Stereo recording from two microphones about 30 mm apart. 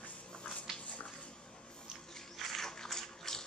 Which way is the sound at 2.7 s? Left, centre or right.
Centre.